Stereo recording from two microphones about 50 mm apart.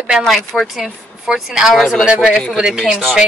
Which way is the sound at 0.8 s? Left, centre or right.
Centre.